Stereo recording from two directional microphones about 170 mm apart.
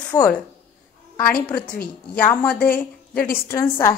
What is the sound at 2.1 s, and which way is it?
A woman's voice, 10° left (ahead or behind).